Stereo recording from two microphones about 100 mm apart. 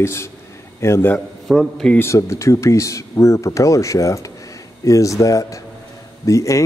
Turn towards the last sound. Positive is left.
turn(degrees=30)  # may be behind; listen again after turning